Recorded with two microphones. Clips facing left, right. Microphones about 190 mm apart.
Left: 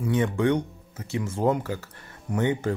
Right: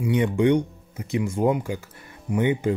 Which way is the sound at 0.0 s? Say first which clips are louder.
Right 3 dB; 15° right (ahead or behind).